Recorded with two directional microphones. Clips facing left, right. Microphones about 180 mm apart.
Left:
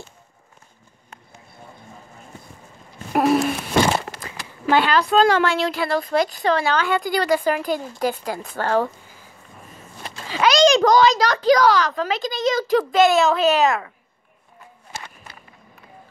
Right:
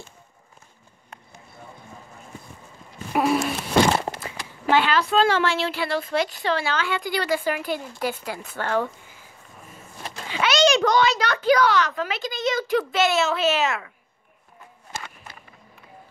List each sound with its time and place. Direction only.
3.1 s a sound: 45° left (ahead or behind)
4.7 s a woman's voice: 40° left (ahead or behind)
10.2 s a woman's voice: 35° left (ahead or behind)